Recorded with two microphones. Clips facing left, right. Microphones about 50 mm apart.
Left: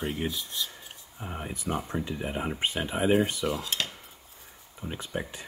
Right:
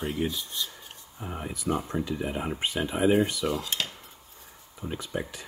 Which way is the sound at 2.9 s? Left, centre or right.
Centre.